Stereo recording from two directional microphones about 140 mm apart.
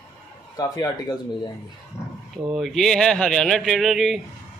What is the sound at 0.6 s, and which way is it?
Speech, 25° left (ahead or behind).